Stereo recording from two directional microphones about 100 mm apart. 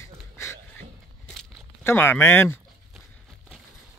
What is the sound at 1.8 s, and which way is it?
Speech, 20° left (ahead or behind).